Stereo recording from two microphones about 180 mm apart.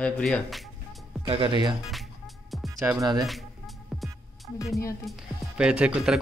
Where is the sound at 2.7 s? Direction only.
15° right (ahead or behind).